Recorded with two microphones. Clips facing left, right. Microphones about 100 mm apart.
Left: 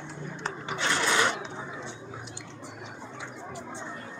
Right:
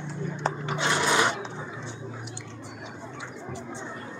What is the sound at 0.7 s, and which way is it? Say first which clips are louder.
Filing: right 1 dB; 20° right (ahead or behind).